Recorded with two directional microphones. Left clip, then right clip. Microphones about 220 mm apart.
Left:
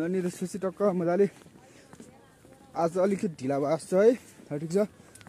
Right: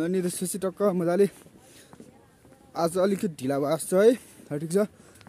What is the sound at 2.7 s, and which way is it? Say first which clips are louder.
Speech: right 1 dB; 20° right (ahead or behind).